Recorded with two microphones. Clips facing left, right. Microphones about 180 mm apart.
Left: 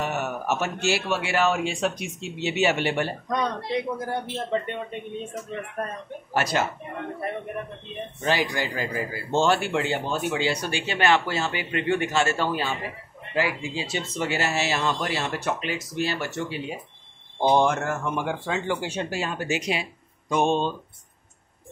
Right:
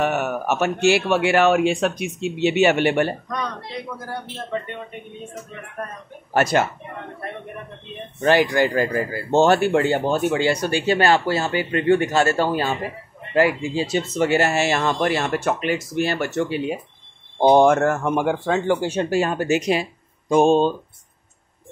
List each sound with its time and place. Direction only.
0.0 s a man's voice: 65° right (ahead or behind)
3.3 s a man's voice: 20° left (ahead or behind)
6.3 s speech: 50° right (ahead or behind)
8.2 s a man's voice: 55° right (ahead or behind); by 20.7 s 35° right (ahead or behind)